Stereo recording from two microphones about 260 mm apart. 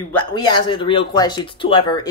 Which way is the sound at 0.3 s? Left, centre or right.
Centre.